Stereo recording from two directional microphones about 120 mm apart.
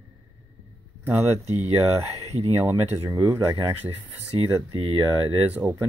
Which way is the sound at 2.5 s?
25° right (ahead or behind).